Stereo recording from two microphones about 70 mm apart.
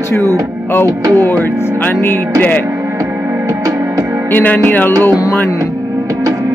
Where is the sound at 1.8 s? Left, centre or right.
Left.